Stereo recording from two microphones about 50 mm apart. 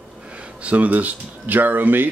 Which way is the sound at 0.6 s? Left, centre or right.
Right.